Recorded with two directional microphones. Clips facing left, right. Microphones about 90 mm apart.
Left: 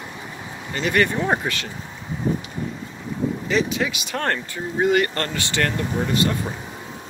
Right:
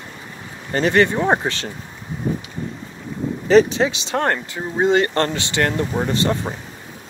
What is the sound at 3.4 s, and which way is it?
Speech, 35° right (ahead or behind).